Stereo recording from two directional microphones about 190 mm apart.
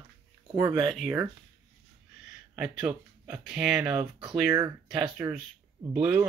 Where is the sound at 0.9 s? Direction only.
Centre (ahead or behind).